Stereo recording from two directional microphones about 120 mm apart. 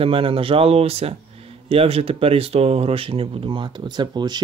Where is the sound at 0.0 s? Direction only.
50° right (ahead or behind).